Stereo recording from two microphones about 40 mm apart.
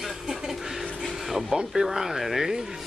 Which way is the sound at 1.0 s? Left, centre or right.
Centre.